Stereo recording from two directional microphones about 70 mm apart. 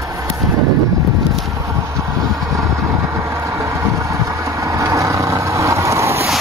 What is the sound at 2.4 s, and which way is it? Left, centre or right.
Vehicle, right.